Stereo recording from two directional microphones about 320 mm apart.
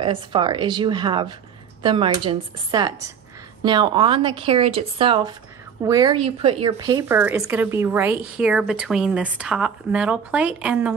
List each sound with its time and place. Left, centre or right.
0.0 s speech: centre